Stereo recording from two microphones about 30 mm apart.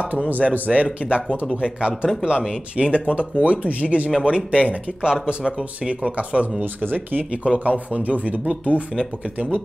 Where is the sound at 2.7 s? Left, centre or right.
Right.